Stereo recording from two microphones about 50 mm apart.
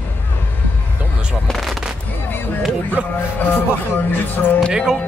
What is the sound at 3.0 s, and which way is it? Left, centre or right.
Speech, right.